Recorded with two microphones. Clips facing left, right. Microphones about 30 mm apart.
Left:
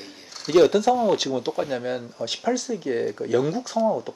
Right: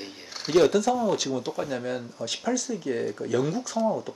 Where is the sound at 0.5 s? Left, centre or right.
Centre.